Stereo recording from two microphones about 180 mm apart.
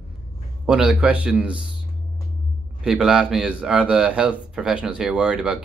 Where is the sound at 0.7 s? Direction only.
5° right (ahead or behind).